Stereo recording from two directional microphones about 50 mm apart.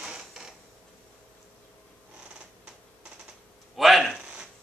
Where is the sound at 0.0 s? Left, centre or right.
Centre.